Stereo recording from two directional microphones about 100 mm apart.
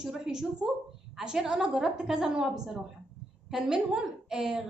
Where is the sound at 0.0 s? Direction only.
5° right (ahead or behind).